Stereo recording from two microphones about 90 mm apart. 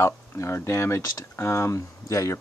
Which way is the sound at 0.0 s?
30° left (ahead or behind).